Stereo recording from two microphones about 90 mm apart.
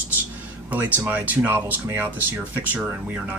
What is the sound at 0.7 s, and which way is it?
Speech, 20° right (ahead or behind).